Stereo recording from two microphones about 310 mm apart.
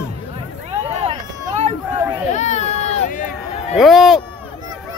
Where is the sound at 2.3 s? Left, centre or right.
Left.